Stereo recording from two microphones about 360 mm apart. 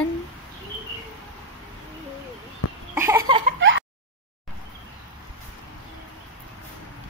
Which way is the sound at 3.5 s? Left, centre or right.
Right.